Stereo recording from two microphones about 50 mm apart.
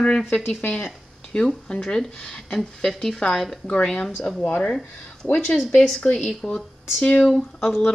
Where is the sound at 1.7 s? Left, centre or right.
Left.